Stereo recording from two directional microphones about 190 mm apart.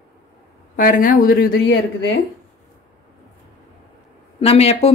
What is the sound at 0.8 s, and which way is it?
Speech, 45° left (ahead or behind).